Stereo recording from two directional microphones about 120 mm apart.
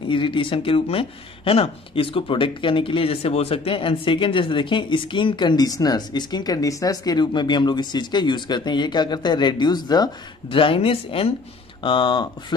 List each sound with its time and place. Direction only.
0.1 s speech: 45° left (ahead or behind)
10.5 s speech: 50° left (ahead or behind)
11.8 s speech: 40° left (ahead or behind)